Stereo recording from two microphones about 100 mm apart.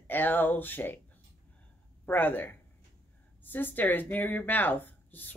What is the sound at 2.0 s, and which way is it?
Speech, 20° left (ahead or behind).